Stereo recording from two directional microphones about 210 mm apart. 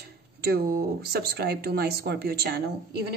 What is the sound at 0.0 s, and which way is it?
Speech, 50° right (ahead or behind).